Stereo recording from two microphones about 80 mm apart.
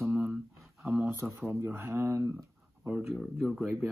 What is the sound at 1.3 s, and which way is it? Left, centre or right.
Speech, right.